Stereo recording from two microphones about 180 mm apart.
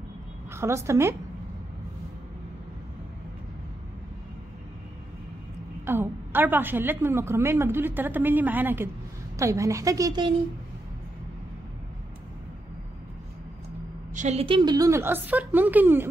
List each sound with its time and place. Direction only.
0.5 s a woman's voice: 15° right (ahead or behind)
5.9 s a woman's voice: 10° right (ahead or behind)
14.1 s a woman's voice: 40° right (ahead or behind); by 16.1 s 10° right (ahead or behind)